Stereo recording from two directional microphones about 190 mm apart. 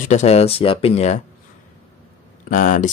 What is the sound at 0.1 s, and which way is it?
Speech, 35° left (ahead or behind).